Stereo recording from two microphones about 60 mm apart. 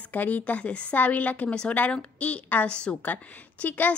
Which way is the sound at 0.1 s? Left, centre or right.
Left.